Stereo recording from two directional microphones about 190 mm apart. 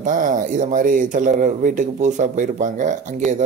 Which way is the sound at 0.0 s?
45° right (ahead or behind).